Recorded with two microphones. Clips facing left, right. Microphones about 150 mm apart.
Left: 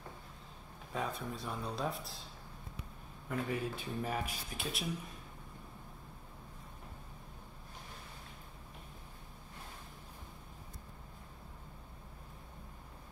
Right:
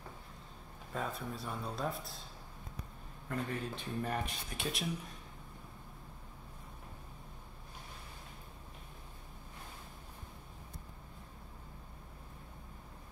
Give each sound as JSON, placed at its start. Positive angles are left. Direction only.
{"t": 0.9, "sound": "speech", "side_deg": 0}
{"t": 3.3, "sound": "speech", "side_deg": 10}